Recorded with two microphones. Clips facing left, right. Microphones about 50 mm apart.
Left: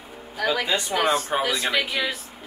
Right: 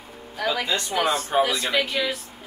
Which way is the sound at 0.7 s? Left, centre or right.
Centre.